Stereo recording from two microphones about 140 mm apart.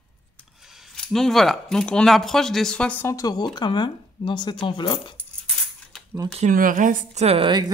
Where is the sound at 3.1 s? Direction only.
25° left (ahead or behind).